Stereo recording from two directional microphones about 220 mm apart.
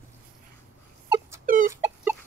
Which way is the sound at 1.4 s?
40° right (ahead or behind).